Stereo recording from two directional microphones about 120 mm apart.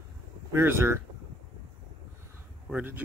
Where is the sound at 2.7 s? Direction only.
15° right (ahead or behind).